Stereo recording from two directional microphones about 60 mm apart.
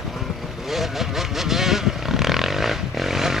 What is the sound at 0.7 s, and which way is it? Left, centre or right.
Vehicle, centre.